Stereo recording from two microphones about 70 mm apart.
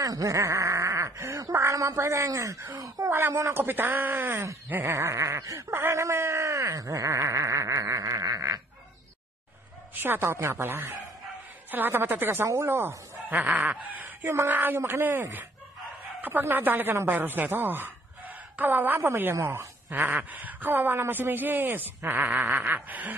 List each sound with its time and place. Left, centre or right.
0.0 s a sound: right
3.1 s speech: right
4.9 s a sound: right
10.0 s speech: right
13.3 s speech: right
14.2 s a woman's voice: right
20.0 s speech: right